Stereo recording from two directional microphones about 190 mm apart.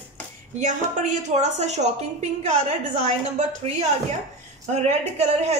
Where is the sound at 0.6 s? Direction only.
40° right (ahead or behind).